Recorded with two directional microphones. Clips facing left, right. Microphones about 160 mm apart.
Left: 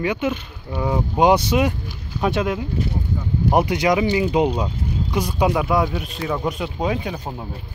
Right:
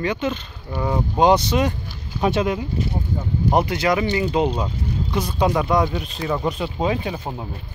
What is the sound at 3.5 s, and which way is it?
Speech, 15° left (ahead or behind).